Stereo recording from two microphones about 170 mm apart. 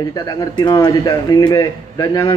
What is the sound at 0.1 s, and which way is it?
Speech, 20° left (ahead or behind).